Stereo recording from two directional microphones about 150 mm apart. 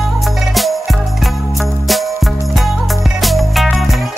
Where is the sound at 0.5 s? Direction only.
Centre (ahead or behind).